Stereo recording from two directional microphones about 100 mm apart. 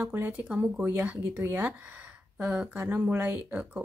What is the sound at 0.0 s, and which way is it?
A woman's voice, 20° right (ahead or behind).